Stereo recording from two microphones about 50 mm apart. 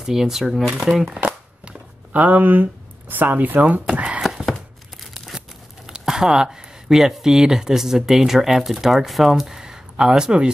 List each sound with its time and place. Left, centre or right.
0.0 s speech: centre
0.8 s speech: centre; by 3.8 s right
3.9 s a sound: right
4.5 s tearing: centre
5.9 s speech: centre